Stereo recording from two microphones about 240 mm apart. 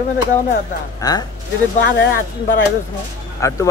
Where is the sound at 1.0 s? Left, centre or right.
Centre.